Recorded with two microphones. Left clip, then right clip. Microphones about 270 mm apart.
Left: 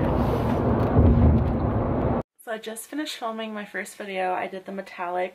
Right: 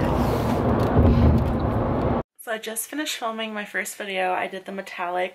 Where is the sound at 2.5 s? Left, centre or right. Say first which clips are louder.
Right 3 dB; centre.